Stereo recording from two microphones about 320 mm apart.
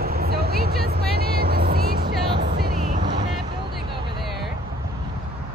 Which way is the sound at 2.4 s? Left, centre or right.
Right.